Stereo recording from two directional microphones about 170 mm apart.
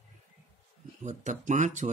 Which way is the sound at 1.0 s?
45° right (ahead or behind).